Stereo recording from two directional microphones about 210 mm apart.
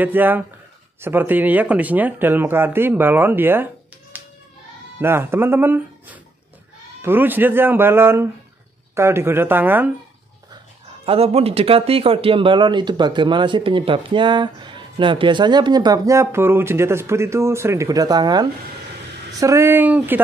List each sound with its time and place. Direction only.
0.0 s speech: 10° right (ahead or behind)
4.1 s hands: 10° right (ahead or behind)
5.0 s speech: 10° right (ahead or behind)
11.1 s speech: 30° right (ahead or behind); by 20.2 s 10° right (ahead or behind)